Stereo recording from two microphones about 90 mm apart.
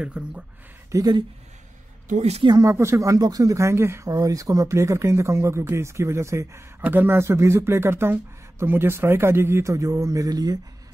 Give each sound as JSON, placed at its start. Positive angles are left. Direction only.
{"t": 0.0, "sound": "speech", "side_deg": -15}
{"t": 0.9, "sound": "speech", "side_deg": -45}
{"t": 2.7, "sound": "speech", "side_deg": -30}
{"t": 4.1, "sound": "speech", "side_deg": -40}
{"t": 6.8, "sound": "speech", "side_deg": -20}